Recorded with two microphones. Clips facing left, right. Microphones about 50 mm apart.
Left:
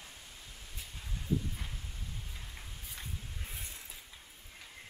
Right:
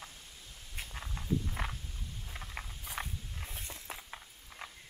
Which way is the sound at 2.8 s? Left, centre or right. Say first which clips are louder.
Right 5 dB; right.